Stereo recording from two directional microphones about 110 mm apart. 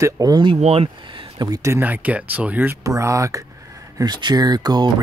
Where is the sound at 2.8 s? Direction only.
30° right (ahead or behind).